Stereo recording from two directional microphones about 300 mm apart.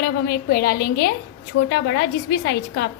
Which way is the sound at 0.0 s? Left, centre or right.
Left.